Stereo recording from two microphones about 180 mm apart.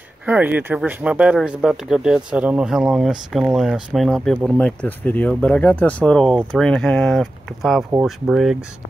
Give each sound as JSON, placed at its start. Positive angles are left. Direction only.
{"t": 0.2, "sound": "speech", "side_deg": -10}